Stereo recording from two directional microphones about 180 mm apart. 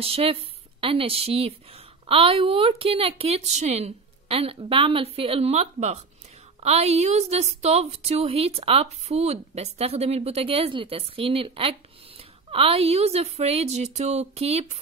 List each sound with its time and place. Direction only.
0.0 s a woman's voice: 35° right (ahead or behind)